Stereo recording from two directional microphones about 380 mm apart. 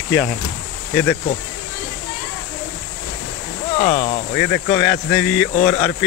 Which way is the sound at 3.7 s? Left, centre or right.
Centre.